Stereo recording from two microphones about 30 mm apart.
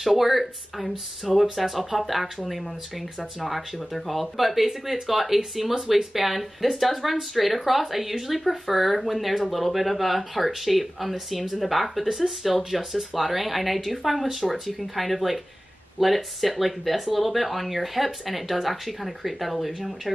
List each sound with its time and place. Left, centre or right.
0.0 s speech: centre